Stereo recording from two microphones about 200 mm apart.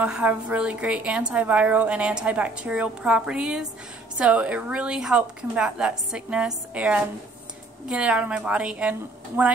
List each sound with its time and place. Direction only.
0.0 s a woman's voice: 5° right (ahead or behind)